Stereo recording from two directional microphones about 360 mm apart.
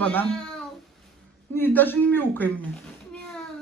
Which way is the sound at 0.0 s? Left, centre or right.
Centre.